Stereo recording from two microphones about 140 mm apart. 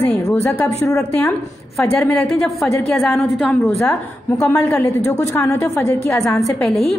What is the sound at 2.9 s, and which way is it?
A woman's voice, centre (ahead or behind).